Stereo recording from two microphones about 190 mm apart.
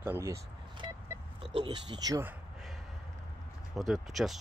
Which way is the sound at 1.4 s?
25° right (ahead or behind).